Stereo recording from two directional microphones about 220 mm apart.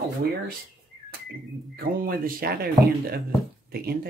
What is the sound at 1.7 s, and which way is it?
Speech, 40° right (ahead or behind).